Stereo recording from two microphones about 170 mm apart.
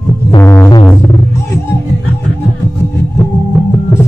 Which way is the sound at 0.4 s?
15° left (ahead or behind).